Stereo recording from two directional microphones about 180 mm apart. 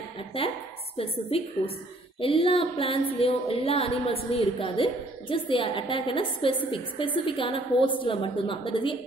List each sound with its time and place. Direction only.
1.3 s a woman's voice: 35° left (ahead or behind)